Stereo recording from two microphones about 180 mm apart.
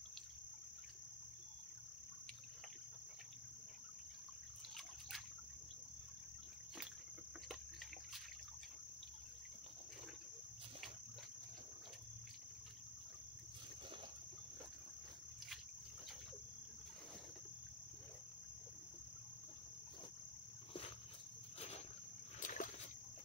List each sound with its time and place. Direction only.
21.5 s insect: 35° left (ahead or behind)
22.4 s rowboat: 45° left (ahead or behind)